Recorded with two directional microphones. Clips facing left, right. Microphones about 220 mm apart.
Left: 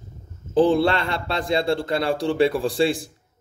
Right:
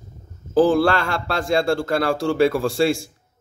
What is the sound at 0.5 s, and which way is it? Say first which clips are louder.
A man's voice: right 2 dB; centre (ahead or behind).